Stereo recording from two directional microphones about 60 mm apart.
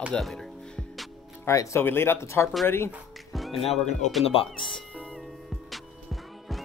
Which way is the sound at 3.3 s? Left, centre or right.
Centre.